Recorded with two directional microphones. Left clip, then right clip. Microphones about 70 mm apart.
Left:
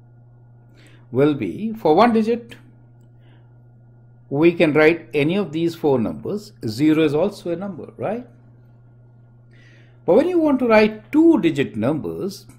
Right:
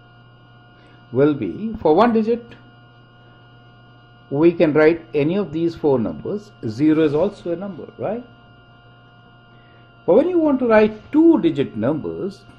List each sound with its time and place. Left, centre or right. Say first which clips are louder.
1.1 s speech: right 1 dB; centre
4.4 s speech: right 1 dB; centre
10.0 s speech: right 1 dB; left